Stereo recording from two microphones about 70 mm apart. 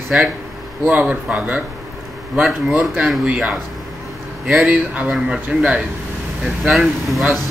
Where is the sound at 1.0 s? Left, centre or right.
Centre.